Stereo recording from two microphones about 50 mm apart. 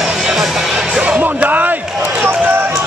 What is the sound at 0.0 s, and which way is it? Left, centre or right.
Music, centre.